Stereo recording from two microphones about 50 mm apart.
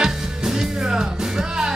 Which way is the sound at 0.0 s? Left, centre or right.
Centre.